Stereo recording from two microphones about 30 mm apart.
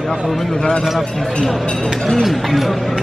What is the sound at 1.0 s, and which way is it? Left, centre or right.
Speech, centre.